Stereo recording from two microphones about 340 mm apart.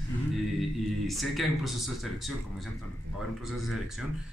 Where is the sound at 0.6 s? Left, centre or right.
Centre.